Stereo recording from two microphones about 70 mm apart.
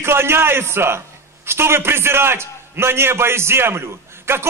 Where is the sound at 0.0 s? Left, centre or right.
Right.